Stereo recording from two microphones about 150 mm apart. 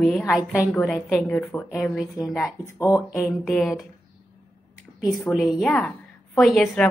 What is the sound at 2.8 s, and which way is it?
Speech, 20° left (ahead or behind).